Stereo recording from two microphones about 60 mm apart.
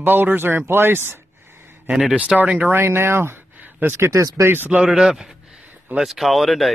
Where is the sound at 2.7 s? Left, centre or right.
Right.